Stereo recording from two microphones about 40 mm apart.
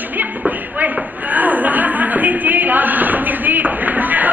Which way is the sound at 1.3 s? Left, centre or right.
Right.